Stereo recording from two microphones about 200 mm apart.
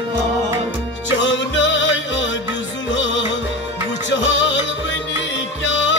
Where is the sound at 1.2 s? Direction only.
65° left (ahead or behind).